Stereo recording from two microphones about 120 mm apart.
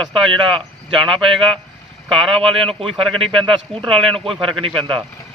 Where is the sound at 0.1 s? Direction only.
45° right (ahead or behind).